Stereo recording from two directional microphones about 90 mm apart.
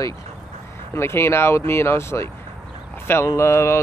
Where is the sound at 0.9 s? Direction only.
30° left (ahead or behind).